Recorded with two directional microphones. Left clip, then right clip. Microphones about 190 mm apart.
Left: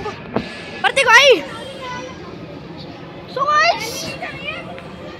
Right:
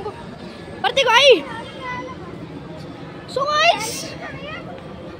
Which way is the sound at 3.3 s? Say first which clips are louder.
Left 2 dB; 30° right (ahead or behind).